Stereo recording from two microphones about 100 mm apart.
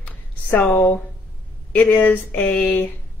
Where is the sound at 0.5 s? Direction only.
15° left (ahead or behind).